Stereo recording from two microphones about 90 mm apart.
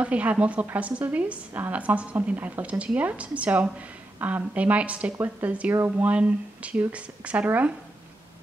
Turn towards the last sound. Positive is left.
turn(degrees=-15)  # may be behind; listen again after turning